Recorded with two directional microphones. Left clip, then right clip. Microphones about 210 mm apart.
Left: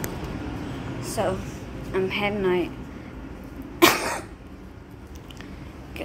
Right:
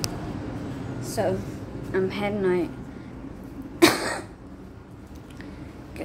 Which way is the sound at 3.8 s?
15° right (ahead or behind).